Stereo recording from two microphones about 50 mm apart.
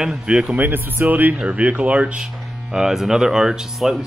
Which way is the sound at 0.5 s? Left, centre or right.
Right.